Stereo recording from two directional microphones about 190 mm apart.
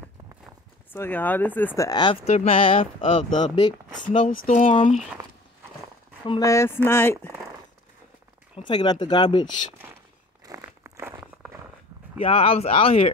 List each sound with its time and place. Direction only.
0.9 s speech: 10° left (ahead or behind)
2.2 s speech: 35° left (ahead or behind)
4.0 s speech: 40° left (ahead or behind)
6.2 s speech: 20° left (ahead or behind)
8.5 s speech: 25° left (ahead or behind)
10.4 s a sound: 15° right (ahead or behind)
12.2 s speech: 30° left (ahead or behind)